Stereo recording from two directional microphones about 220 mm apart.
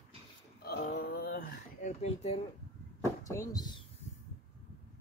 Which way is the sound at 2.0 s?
30° left (ahead or behind).